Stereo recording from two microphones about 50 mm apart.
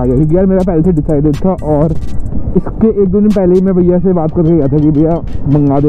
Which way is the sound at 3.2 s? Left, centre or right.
Centre.